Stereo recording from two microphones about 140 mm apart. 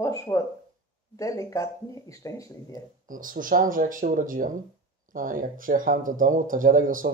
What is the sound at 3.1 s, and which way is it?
Speech, 75° right (ahead or behind).